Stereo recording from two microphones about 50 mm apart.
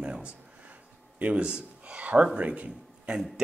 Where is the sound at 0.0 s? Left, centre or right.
Centre.